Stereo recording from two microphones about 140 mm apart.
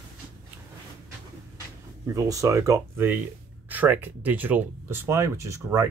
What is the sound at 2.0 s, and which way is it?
Speech, 25° right (ahead or behind).